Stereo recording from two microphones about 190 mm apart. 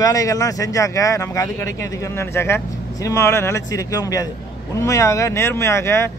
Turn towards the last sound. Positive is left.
turn(degrees=15)  # may be behind; listen again after turning